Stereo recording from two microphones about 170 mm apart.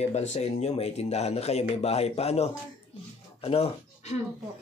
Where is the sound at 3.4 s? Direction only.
35° left (ahead or behind).